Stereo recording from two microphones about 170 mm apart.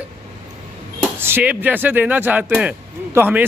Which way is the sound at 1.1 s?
15° right (ahead or behind).